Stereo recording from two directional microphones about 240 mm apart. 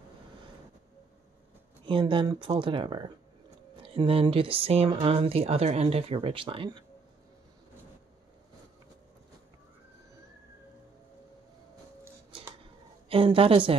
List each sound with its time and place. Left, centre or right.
1.9 s speech: right
13.1 s speech: right